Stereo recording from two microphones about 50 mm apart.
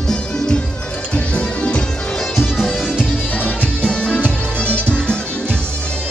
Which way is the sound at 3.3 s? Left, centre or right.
Left.